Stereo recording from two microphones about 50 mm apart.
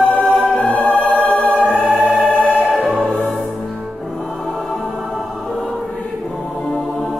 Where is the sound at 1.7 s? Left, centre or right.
Centre.